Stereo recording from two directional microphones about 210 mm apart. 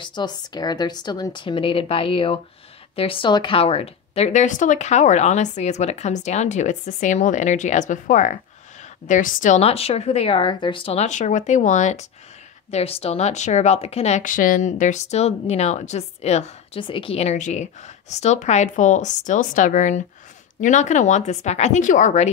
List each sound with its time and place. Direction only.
0.0 s a woman's voice: 20° left (ahead or behind)